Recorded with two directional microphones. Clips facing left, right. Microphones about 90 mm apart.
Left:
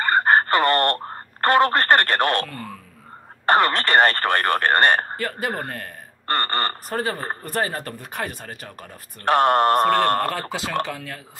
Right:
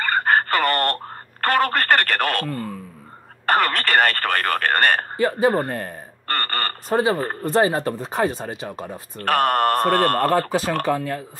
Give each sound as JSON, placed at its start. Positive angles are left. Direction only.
{"t": 0.0, "sound": "a sound", "side_deg": 20}
{"t": 3.4, "sound": "speech", "side_deg": 20}
{"t": 5.2, "sound": "speech", "side_deg": -20}
{"t": 6.2, "sound": "speech", "side_deg": 20}
{"t": 6.9, "sound": "speech", "side_deg": -15}
{"t": 9.2, "sound": "speech", "side_deg": 20}
{"t": 10.9, "sound": "speech", "side_deg": -35}